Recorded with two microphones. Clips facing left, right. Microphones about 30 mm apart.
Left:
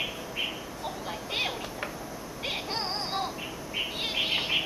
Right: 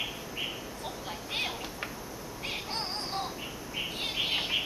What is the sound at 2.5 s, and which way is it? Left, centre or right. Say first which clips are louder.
Synthetic singing: left 3 dB; left.